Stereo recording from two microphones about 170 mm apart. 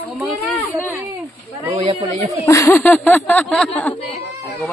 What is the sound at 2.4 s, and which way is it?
Speech, 15° left (ahead or behind).